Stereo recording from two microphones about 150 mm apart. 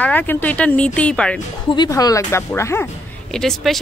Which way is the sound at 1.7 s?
25° left (ahead or behind).